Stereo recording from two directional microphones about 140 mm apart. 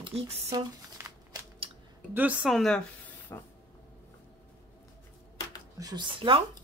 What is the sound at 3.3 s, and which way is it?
Speech, 20° left (ahead or behind).